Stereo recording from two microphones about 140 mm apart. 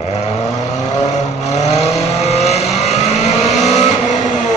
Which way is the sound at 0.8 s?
55° left (ahead or behind).